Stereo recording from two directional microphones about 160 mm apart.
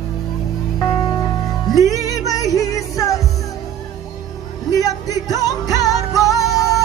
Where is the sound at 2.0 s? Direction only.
20° left (ahead or behind).